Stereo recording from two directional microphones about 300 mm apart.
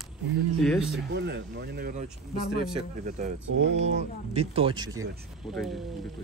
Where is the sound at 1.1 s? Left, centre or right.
Right; by 5.0 s centre.